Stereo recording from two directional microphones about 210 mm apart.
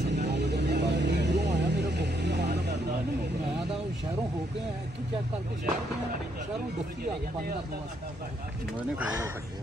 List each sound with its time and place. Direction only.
0.0 s vehicle: 55° right (ahead or behind)
8.7 s speech: 5° right (ahead or behind)